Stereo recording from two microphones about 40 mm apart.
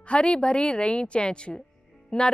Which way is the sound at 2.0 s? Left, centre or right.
Left.